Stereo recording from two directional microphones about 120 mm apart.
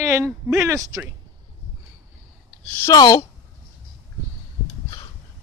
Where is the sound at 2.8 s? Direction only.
30° left (ahead or behind).